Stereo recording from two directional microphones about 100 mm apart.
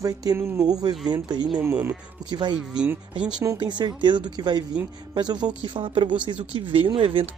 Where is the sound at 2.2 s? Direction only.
50° right (ahead or behind).